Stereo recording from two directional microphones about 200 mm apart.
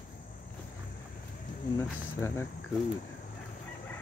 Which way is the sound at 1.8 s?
15° left (ahead or behind).